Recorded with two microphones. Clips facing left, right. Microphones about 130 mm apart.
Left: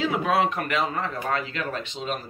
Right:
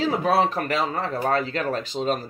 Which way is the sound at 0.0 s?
35° right (ahead or behind).